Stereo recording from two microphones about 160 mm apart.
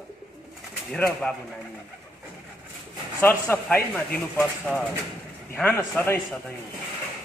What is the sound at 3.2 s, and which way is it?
A man's voice, 15° left (ahead or behind).